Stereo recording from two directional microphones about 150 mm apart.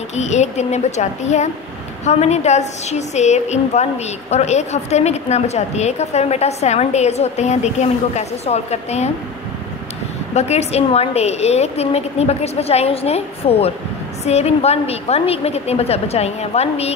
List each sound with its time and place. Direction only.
0.1 s a woman's voice: 50° left (ahead or behind)
10.3 s a woman's voice: 45° left (ahead or behind)